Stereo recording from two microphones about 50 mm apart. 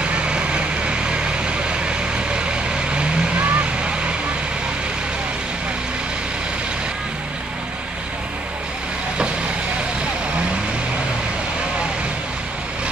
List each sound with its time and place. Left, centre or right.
0.0 s vehicle: right